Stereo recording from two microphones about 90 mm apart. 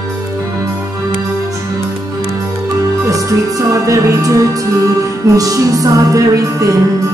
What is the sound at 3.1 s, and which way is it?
Music, 40° right (ahead or behind).